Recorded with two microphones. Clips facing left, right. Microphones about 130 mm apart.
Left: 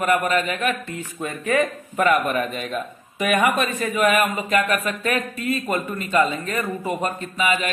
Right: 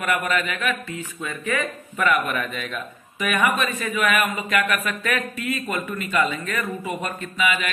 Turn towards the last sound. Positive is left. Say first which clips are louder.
# left 1 dB
turn(degrees=35)  # may be behind; listen again after turning